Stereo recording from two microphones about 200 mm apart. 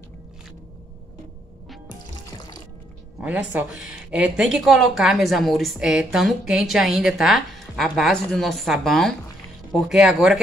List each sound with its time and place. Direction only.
1.9 s music: 20° left (ahead or behind)
3.2 s speech: 5° right (ahead or behind)